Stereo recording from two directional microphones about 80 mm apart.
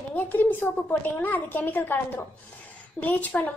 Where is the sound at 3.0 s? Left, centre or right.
Left.